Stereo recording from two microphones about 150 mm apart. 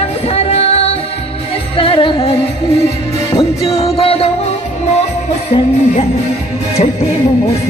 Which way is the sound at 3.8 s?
40° left (ahead or behind).